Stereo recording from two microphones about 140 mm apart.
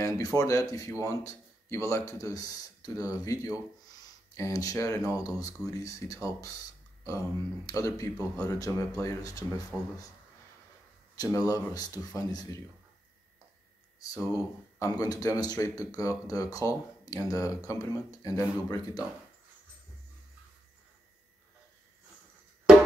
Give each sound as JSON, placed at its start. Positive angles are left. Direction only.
{"t": 0.0, "sound": "speech", "side_deg": 25}
{"t": 11.1, "sound": "speech", "side_deg": 25}
{"t": 13.9, "sound": "speech", "side_deg": 25}